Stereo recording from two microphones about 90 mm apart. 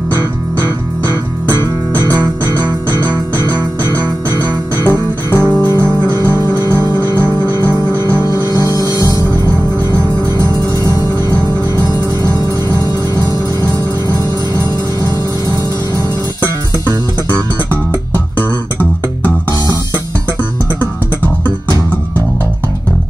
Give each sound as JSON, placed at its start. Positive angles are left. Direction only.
{"t": 4.8, "sound": "music", "side_deg": 15}
{"t": 7.2, "sound": "music", "side_deg": 20}
{"t": 8.2, "sound": "music", "side_deg": 45}
{"t": 11.2, "sound": "music", "side_deg": -45}